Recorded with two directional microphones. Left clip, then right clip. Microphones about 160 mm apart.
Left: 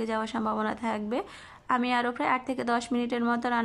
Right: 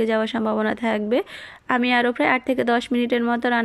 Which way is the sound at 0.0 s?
15° right (ahead or behind).